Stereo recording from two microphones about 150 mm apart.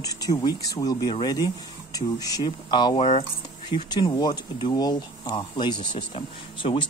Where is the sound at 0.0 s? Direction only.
25° left (ahead or behind).